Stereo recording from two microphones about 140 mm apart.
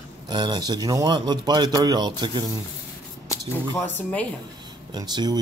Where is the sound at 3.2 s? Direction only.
20° left (ahead or behind).